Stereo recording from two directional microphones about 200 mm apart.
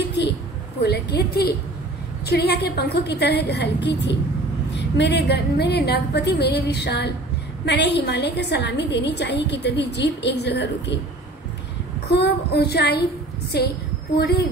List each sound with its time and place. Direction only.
0.8 s a woman's voice: 55° left (ahead or behind)
12.1 s child singing: 55° left (ahead or behind)